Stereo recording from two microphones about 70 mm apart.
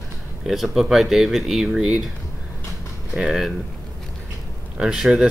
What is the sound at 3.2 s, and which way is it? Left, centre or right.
Speech, centre.